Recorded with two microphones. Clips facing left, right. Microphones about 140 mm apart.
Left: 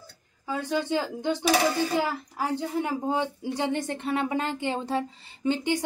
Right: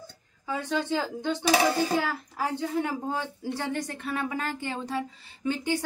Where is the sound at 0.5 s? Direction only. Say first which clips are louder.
Left 1 dB; 10° left (ahead or behind).